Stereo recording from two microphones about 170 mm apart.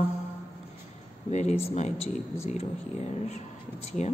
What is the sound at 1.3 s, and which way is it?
A woman's voice, 40° left (ahead or behind).